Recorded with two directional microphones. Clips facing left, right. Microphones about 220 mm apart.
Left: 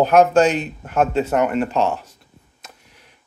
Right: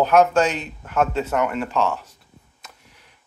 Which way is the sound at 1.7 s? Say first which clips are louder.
Left 2 dB; 25° left (ahead or behind).